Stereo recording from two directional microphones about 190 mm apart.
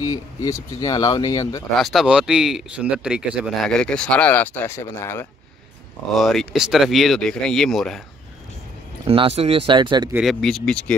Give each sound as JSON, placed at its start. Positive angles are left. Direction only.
{"t": 0.0, "sound": "speech", "side_deg": 20}
{"t": 1.8, "sound": "speech", "side_deg": 0}
{"t": 6.1, "sound": "speech", "side_deg": 0}
{"t": 9.0, "sound": "speech", "side_deg": -30}
{"t": 10.1, "sound": "speech", "side_deg": 0}